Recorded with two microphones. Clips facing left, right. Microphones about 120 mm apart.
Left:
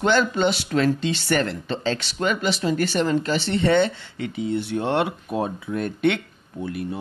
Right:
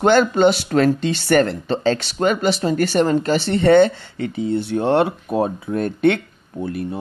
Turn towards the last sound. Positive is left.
turn(degrees=-40)  # may be behind; listen again after turning